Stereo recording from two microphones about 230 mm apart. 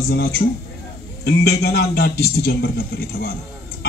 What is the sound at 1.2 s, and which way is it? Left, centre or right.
A man's voice, left.